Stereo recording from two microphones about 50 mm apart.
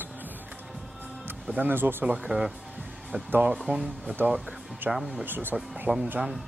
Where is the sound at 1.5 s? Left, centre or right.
Right.